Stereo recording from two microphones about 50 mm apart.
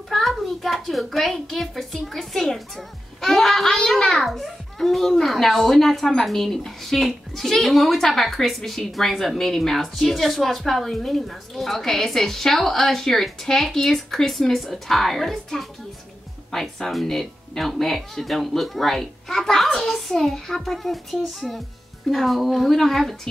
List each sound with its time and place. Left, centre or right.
0.4 s a woman's voice: centre
4.3 s a child's voice: centre